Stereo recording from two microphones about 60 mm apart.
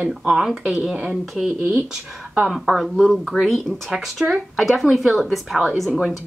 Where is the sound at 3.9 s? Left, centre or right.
Centre.